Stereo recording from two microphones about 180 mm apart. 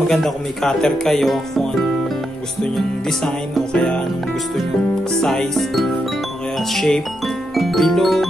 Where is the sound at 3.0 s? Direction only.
Centre (ahead or behind).